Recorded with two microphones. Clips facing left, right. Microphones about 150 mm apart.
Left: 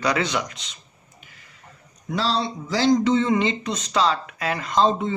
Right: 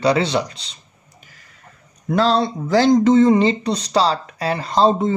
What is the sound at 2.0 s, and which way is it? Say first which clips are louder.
Speech: right 7 dB; 55° right (ahead or behind).